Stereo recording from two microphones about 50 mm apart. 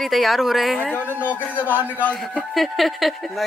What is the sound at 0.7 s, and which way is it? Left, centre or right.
Speech, left.